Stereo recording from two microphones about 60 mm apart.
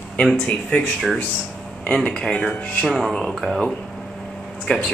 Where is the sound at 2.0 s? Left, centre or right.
Centre.